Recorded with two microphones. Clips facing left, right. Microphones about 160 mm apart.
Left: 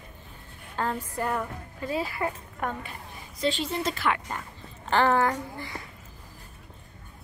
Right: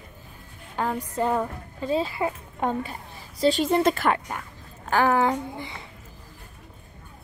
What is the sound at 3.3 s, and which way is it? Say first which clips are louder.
Speech: right 7 dB; 40° right (ahead or behind).